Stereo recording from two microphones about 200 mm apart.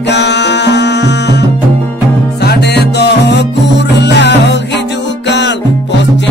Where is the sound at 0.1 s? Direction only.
60° left (ahead or behind).